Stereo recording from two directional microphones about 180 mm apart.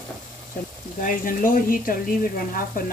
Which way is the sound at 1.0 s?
50° left (ahead or behind).